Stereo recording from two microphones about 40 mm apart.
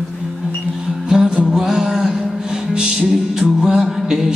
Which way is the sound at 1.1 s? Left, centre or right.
Right.